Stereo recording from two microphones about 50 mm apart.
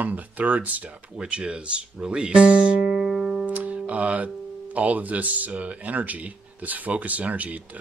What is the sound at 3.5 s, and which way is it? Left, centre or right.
Speech, right.